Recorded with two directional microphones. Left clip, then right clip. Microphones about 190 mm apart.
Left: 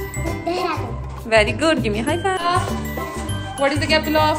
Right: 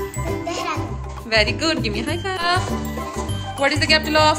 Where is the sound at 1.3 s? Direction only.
15° right (ahead or behind).